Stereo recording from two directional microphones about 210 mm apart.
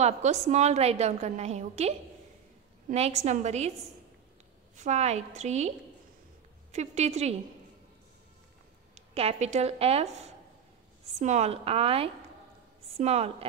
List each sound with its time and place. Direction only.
0.0 s a woman's voice: 35° right (ahead or behind)
4.7 s a woman's voice: 35° right (ahead or behind)
6.7 s a woman's voice: 30° right (ahead or behind)
8.9 s a woman's voice: 30° right (ahead or behind)